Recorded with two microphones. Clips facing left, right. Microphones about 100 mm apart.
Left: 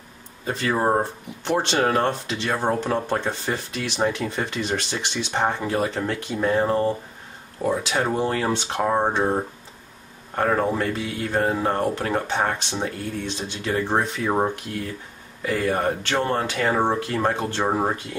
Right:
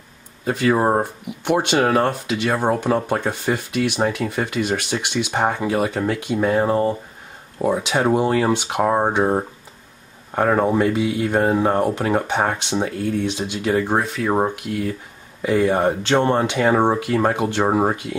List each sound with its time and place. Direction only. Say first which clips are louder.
0.5 s speech: right 4 dB; 5° right (ahead or behind)
15.4 s speech: right 5 dB; 20° right (ahead or behind)